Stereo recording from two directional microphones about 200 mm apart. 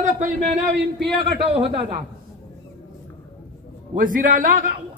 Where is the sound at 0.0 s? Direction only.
35° right (ahead or behind).